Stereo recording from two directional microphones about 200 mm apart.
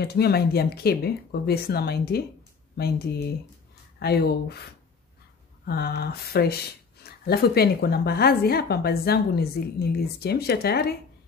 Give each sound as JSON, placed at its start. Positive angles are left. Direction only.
{"t": 0.0, "sound": "speech", "side_deg": 55}
{"t": 5.7, "sound": "speech", "side_deg": 50}